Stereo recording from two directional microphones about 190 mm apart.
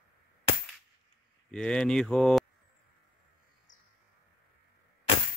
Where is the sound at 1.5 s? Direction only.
5° left (ahead or behind).